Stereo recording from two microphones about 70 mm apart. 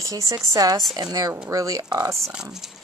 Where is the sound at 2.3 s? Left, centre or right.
Centre.